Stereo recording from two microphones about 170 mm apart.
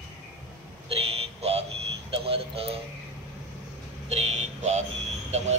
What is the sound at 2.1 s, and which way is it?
Speech, 35° right (ahead or behind).